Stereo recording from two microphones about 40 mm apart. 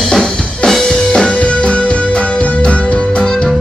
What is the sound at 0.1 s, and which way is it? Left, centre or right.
Drum kit, left.